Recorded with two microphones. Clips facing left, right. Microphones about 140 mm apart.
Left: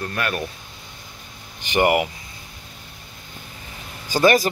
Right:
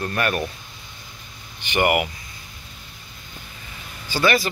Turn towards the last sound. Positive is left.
turn(degrees=45)  # may be behind; listen again after turning